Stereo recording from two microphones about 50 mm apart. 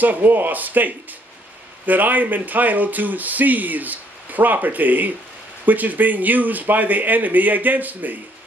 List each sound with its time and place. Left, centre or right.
0.0 s speech: right